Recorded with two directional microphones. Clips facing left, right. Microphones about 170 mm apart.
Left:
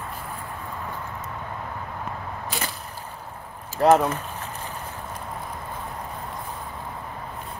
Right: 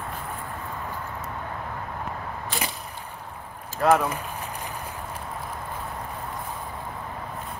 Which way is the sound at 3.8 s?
30° left (ahead or behind).